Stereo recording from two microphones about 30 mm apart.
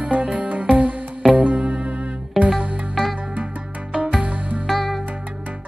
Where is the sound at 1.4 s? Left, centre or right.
Right.